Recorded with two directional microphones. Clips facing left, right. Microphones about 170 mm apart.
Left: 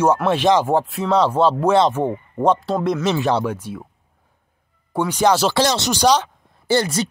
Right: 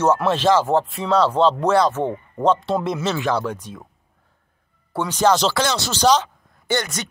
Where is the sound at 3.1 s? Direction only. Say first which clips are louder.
Left 3 dB; 25° left (ahead or behind).